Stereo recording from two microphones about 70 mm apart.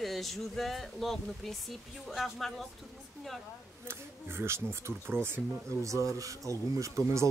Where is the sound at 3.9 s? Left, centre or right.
Right.